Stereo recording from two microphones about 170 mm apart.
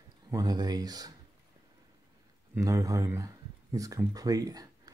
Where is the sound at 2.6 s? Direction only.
20° right (ahead or behind).